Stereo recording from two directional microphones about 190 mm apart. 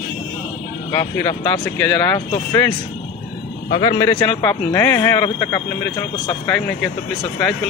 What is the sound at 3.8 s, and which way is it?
Speech, 25° left (ahead or behind).